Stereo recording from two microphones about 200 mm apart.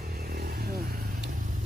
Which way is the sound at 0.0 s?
50° right (ahead or behind).